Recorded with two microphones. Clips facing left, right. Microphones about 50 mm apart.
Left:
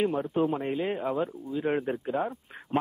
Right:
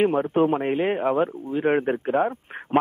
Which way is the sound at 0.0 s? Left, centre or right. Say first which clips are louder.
Right 7 dB; right.